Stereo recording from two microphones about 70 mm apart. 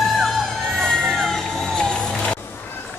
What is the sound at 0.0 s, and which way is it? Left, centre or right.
Crowd, centre.